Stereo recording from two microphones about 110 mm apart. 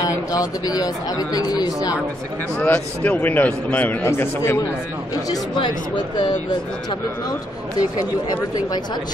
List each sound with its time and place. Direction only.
0.0 s a man's voice: 35° left (ahead or behind)
2.6 s a man's voice: 15° left (ahead or behind)
6.2 s speech: 45° left (ahead or behind)